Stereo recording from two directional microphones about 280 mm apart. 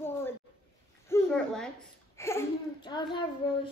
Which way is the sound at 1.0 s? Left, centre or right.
Centre.